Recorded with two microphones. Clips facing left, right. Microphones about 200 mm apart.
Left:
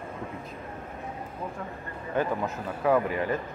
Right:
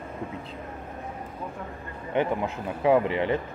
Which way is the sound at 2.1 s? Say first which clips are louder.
Right 2 dB; 20° right (ahead or behind).